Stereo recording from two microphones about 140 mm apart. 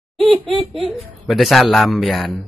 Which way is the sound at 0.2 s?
35° right (ahead or behind).